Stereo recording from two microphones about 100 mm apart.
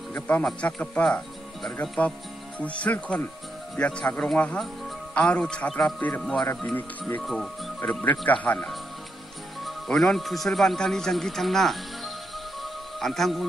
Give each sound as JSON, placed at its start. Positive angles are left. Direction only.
{"t": 0.1, "sound": "a man's voice", "side_deg": 15}
{"t": 7.2, "sound": "a man's voice", "side_deg": 0}
{"t": 7.8, "sound": "a man's voice", "side_deg": 15}
{"t": 9.7, "sound": "a man's voice", "side_deg": 5}